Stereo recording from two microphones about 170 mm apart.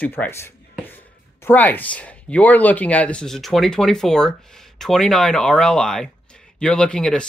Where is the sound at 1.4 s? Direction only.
10° left (ahead or behind).